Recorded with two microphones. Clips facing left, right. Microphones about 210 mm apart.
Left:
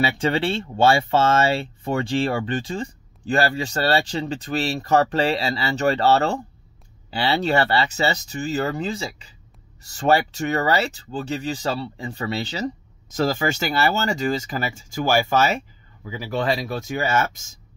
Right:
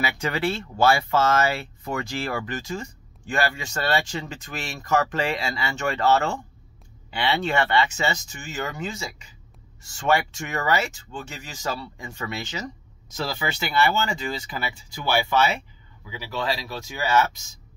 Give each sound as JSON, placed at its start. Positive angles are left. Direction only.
{"t": 0.0, "sound": "speech", "side_deg": 30}
{"t": 13.1, "sound": "speech", "side_deg": 45}